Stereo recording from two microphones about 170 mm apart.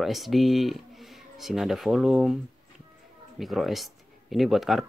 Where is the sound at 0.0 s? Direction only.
Centre (ahead or behind).